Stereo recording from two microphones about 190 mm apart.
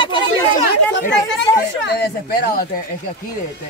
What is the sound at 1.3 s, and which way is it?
Speech, 65° left (ahead or behind).